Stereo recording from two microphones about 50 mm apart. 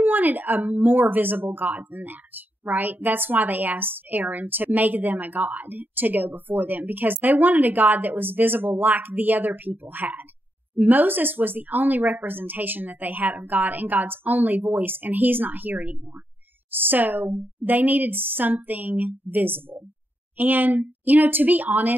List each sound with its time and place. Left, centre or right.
0.0 s speech: right